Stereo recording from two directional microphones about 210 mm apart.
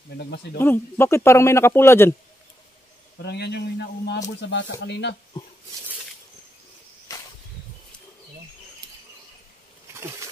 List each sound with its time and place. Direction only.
0.1 s speech: 55° left (ahead or behind)
0.6 s a man's voice: 10° left (ahead or behind)
3.2 s speech: 55° left (ahead or behind)
9.9 s insect: 10° right (ahead or behind)